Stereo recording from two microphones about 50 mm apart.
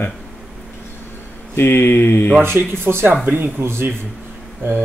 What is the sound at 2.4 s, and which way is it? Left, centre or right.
Speech, right.